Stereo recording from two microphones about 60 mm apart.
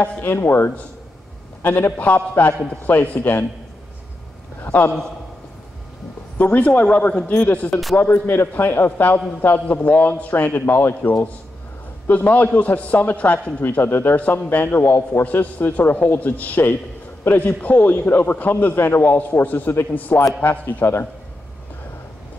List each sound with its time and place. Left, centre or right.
0.0 s a man's voice: left
4.7 s speech: left
6.4 s a man's voice: left